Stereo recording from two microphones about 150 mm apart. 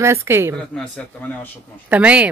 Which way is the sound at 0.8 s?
10° left (ahead or behind).